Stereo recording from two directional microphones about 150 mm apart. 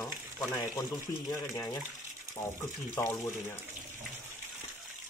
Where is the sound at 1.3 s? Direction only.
25° left (ahead or behind).